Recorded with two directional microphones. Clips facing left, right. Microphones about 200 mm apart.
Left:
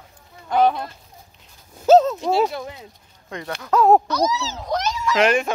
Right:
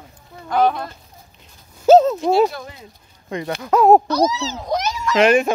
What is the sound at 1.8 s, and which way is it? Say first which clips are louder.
Clip-clop: right 2 dB; centre (ahead or behind).